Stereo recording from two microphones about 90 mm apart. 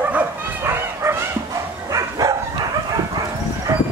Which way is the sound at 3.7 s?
30° right (ahead or behind).